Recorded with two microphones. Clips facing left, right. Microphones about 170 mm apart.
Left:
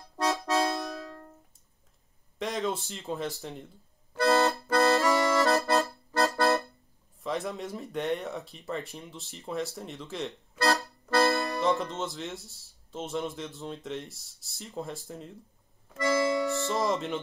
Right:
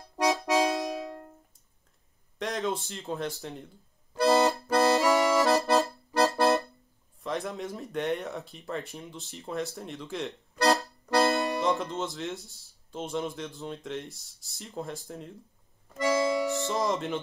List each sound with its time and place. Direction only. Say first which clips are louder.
0.2 s accordion: right 2 dB; 15° right (ahead or behind)
2.3 s speech: even; centre (ahead or behind)
4.2 s music: right 1 dB; 20° right (ahead or behind)
4.6 s accordion: right 1 dB; 15° right (ahead or behind)
7.2 s speech: even; centre (ahead or behind)
10.6 s music: right 2 dB; 20° right (ahead or behind)
11.6 s speech: even; centre (ahead or behind)
16.0 s accordion: even; 15° right (ahead or behind)
16.4 s speech: even; centre (ahead or behind)